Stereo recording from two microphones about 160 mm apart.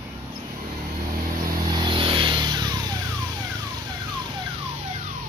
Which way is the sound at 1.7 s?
30° right (ahead or behind).